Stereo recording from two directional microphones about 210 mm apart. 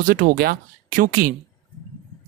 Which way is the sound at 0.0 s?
40° right (ahead or behind).